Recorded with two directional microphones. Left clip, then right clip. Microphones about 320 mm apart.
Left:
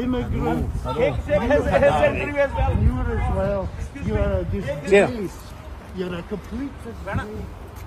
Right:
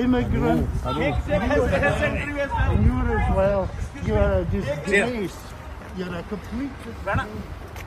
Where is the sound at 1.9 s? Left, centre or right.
Centre.